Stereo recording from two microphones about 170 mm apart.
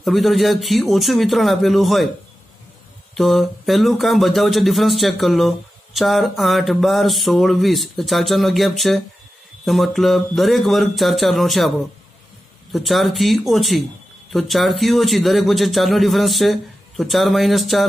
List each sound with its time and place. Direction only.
0.0 s a man's voice: centre (ahead or behind)
3.2 s a man's voice: centre (ahead or behind)
12.7 s a man's voice: centre (ahead or behind)